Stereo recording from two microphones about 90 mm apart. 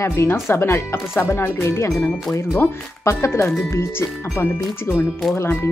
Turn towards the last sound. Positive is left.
turn(degrees=30)  # may be behind; listen again after turning